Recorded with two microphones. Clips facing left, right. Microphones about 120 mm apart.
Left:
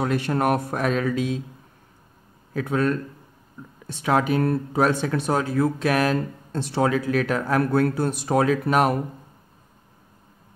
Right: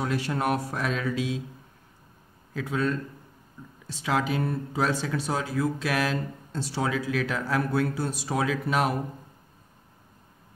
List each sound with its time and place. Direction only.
0.0 s speech: 55° left (ahead or behind)
2.5 s speech: 55° left (ahead or behind)